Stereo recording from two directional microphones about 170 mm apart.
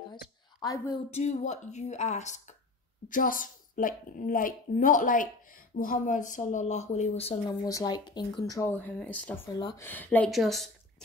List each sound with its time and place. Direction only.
0.1 s a sound: 20° left (ahead or behind)
1.1 s a woman's voice: 40° left (ahead or behind)
7.6 s speech: 20° left (ahead or behind)
8.7 s speech: 10° left (ahead or behind)
9.6 s speech: 25° left (ahead or behind)
9.8 s a woman's voice: 10° left (ahead or behind)